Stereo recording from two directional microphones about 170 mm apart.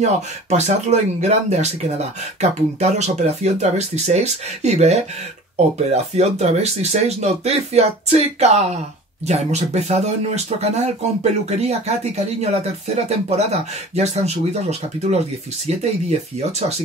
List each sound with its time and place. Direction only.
0.0 s speech: 40° right (ahead or behind)